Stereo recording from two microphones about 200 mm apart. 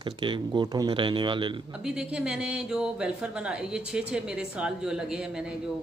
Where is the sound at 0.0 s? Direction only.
25° right (ahead or behind).